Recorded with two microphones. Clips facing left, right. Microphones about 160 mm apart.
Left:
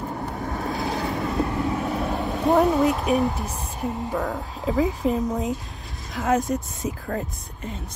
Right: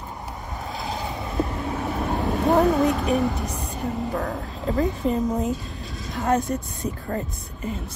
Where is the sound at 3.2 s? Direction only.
75° right (ahead or behind).